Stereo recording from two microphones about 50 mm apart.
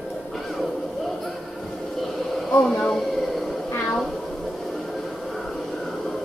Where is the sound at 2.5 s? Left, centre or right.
Left.